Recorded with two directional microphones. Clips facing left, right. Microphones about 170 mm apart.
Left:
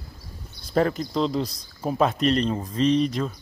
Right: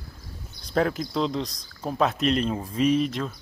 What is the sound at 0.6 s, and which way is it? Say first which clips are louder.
Speech: left 2 dB; centre (ahead or behind).